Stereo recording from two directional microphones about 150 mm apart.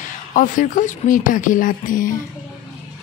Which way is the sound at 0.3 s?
60° left (ahead or behind).